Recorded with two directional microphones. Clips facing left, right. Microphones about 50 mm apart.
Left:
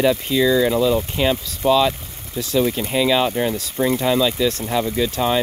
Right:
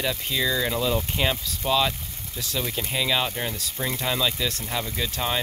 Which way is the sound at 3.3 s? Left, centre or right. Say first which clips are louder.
Left 9 dB; centre.